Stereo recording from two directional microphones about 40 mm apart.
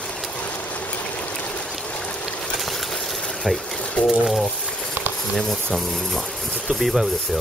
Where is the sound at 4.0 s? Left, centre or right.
Left.